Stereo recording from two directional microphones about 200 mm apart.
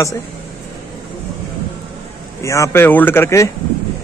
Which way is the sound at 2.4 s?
15° left (ahead or behind).